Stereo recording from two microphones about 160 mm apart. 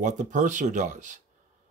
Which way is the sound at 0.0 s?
50° right (ahead or behind).